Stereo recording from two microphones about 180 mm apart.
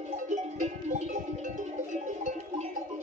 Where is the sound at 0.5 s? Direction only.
40° right (ahead or behind).